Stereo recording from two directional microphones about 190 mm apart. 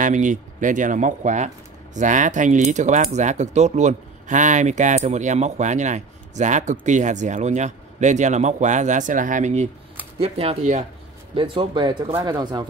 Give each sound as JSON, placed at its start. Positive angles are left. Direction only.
{"t": 0.0, "sound": "speech", "side_deg": -40}
{"t": 11.3, "sound": "speech", "side_deg": -25}